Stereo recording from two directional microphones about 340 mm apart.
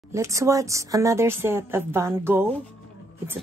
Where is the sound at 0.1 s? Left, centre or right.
Centre.